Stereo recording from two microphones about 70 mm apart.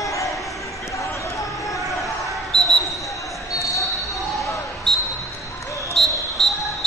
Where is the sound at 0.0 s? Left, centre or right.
Left.